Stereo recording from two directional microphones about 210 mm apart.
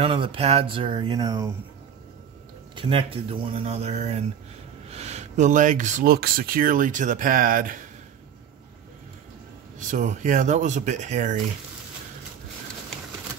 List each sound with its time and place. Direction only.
0.0 s speech: 25° right (ahead or behind)
2.7 s speech: 25° right (ahead or behind); by 7.7 s 40° right (ahead or behind)
9.8 s speech: 35° right (ahead or behind)